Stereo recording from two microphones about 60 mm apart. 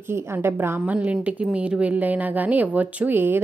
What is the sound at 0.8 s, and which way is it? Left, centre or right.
A woman's voice, right.